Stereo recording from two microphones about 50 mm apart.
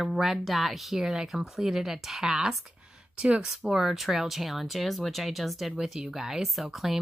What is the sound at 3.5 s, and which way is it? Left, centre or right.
Speech, centre.